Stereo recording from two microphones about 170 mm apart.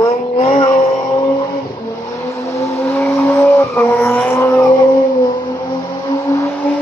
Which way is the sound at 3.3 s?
15° left (ahead or behind).